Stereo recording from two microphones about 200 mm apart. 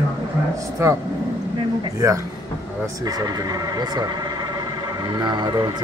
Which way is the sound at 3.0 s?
20° right (ahead or behind).